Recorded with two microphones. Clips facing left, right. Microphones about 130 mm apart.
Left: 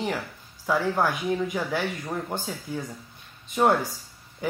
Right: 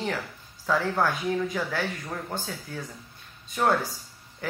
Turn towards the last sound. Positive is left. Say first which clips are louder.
# left 3 dB
turn(degrees=15)  # may be behind; listen again after turning